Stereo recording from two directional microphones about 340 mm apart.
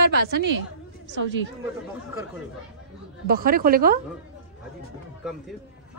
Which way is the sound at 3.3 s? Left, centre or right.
Right.